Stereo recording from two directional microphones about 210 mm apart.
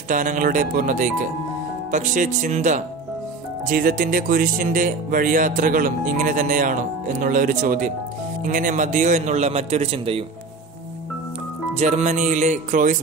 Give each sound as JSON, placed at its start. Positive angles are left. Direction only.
{"t": 0.1, "sound": "speech", "side_deg": -40}
{"t": 11.7, "sound": "speech", "side_deg": -35}